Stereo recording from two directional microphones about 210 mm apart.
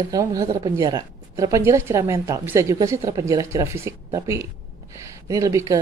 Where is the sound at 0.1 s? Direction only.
15° right (ahead or behind).